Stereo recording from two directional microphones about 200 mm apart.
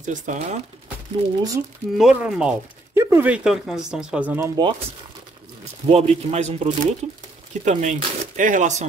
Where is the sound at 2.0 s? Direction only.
5° right (ahead or behind).